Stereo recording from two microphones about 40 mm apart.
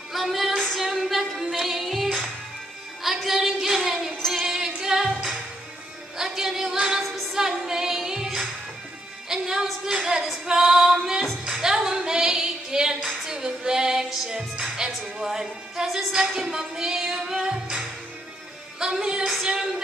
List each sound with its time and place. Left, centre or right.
0.1 s music: centre
3.0 s a sound: centre
4.8 s music: centre
7.3 s a woman's voice: centre
11.5 s female singing: centre
13.2 s a woman's voice: centre
18.8 s a woman's voice: centre